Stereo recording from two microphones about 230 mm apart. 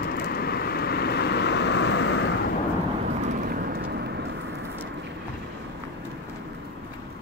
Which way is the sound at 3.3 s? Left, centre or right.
Right.